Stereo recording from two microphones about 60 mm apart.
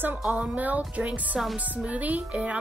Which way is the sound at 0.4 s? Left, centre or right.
Right.